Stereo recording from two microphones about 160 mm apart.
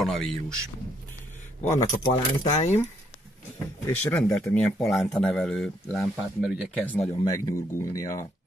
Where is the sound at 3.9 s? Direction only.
10° left (ahead or behind).